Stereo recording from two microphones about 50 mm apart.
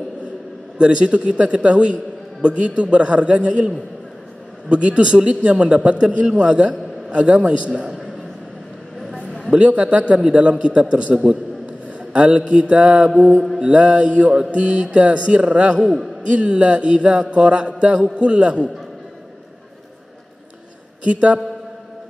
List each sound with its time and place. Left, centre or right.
0.7 s a man's voice: right
9.5 s a man's voice: right
21.0 s speech: right